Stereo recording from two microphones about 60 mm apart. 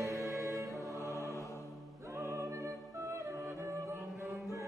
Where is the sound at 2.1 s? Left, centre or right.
Right.